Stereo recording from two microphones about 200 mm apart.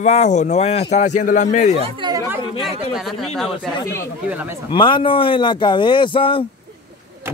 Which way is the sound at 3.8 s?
15° left (ahead or behind).